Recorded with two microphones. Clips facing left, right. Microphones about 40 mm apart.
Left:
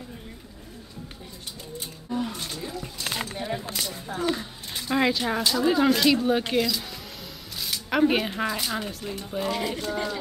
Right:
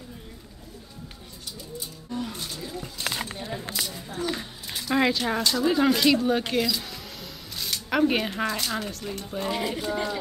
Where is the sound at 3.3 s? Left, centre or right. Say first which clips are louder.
Left 4 dB; centre.